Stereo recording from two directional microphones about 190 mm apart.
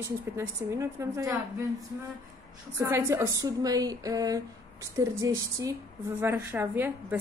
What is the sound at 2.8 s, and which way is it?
A woman's voice, 15° right (ahead or behind).